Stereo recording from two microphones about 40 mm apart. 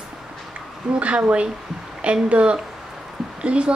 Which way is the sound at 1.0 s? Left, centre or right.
Right.